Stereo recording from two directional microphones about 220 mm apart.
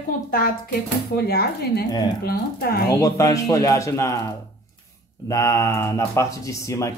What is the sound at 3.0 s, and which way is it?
Speech, 15° left (ahead or behind).